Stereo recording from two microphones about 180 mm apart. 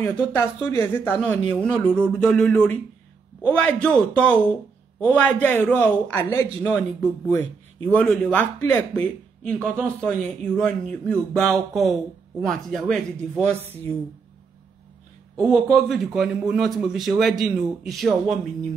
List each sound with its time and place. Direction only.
0.0 s a man's voice: 10° left (ahead or behind)
15.3 s a man's voice: centre (ahead or behind)